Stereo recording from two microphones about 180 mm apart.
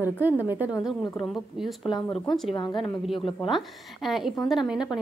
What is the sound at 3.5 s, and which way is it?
A woman's voice, centre (ahead or behind).